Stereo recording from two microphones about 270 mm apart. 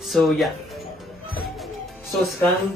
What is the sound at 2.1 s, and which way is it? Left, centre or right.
Speech, centre.